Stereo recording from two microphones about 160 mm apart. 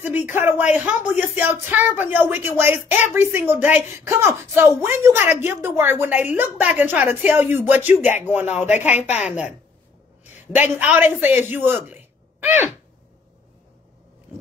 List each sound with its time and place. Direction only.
0.0 s speech: 10° right (ahead or behind)
8.6 s speech: 45° left (ahead or behind)
10.3 s a man's voice: 10° right (ahead or behind)